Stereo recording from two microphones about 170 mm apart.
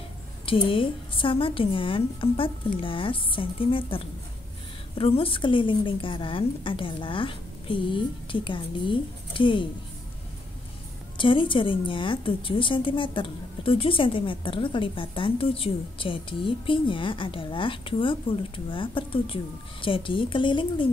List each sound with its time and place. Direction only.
0.5 s a woman's voice: 30° left (ahead or behind)
11.1 s a woman's voice: 30° left (ahead or behind)